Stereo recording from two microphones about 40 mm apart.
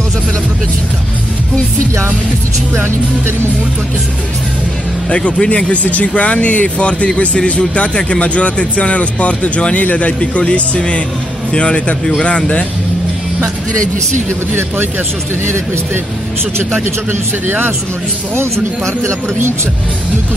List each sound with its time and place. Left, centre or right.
2.7 s speech: right
5.1 s speech: left
10.4 s speech: left
15.4 s speech: right
16.7 s a man's voice: right